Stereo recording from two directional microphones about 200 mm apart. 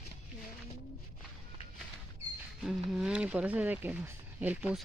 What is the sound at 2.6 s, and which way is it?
Speech, 5° right (ahead or behind).